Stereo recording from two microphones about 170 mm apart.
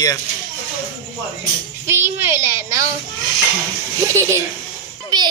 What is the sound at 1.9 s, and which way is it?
Speech, 15° right (ahead or behind).